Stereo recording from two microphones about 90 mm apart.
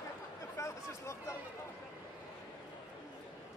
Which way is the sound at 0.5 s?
35° left (ahead or behind).